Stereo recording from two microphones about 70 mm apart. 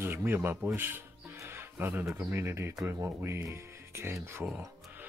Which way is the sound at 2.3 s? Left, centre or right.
Right.